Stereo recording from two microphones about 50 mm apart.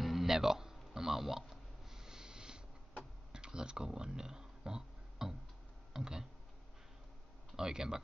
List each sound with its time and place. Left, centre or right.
0.0 s a sound: centre
3.3 s music: centre
5.9 s speech: centre
7.5 s speech: centre